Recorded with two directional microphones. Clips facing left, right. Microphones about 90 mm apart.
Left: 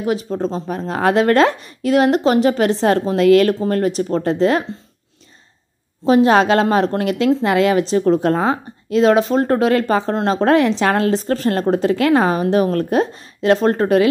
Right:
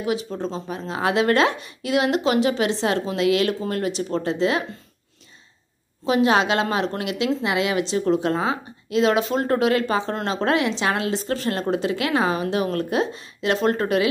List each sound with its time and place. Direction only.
0.0 s speech: 40° left (ahead or behind)
6.0 s a woman's voice: 40° left (ahead or behind)